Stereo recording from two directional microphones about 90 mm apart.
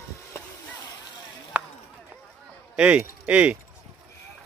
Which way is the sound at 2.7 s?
15° right (ahead or behind).